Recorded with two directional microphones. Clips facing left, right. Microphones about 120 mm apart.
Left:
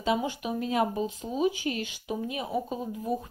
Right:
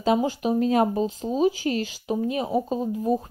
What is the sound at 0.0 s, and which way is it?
Speech, 35° right (ahead or behind).